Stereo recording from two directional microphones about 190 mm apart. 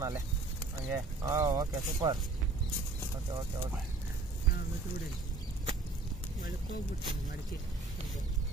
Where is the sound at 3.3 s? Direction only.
20° right (ahead or behind).